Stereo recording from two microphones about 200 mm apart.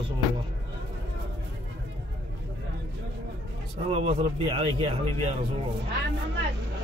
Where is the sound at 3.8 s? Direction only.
30° right (ahead or behind).